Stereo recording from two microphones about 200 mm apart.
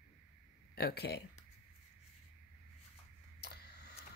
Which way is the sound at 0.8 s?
55° left (ahead or behind).